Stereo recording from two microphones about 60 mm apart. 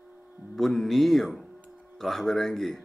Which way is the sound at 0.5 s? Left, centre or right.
Centre.